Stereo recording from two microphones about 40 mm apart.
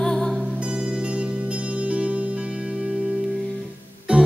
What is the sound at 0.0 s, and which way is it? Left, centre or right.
Music, centre.